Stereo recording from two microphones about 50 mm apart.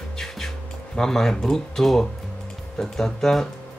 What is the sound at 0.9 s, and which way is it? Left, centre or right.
Speech, centre.